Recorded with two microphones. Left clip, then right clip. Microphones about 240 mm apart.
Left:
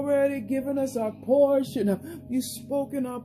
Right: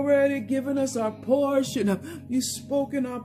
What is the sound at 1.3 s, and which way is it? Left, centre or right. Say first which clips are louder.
Speech: left 3 dB; centre.